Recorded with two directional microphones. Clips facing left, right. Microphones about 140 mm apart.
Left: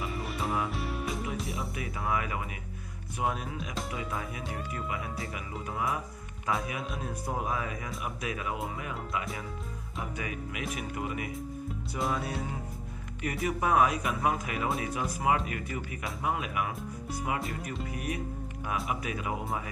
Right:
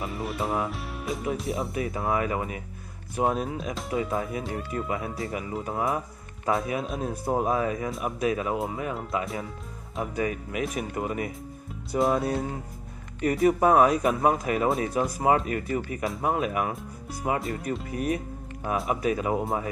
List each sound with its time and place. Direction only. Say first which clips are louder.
0.0 s music: right 4 dB; centre (ahead or behind)
1.5 s speech: right 7 dB; 30° right (ahead or behind)
13.2 s speech: right 9 dB; 35° right (ahead or behind)
17.9 s speech: right 7 dB; 35° right (ahead or behind)